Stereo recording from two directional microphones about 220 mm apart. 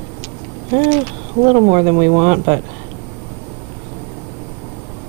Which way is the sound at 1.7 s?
25° right (ahead or behind).